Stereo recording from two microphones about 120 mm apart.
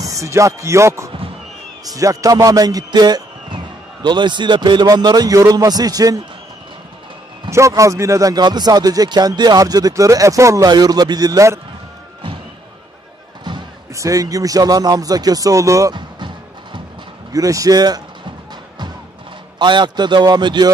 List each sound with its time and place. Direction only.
0.0 s a man's voice: 25° right (ahead or behind)
7.4 s a man's voice: 25° right (ahead or behind)
13.9 s a man's voice: 30° right (ahead or behind)
15.9 s music: 40° right (ahead or behind)
17.3 s a man's voice: 30° right (ahead or behind)
19.6 s a man's voice: 40° right (ahead or behind)